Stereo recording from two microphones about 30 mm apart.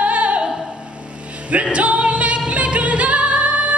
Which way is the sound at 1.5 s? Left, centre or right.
Right.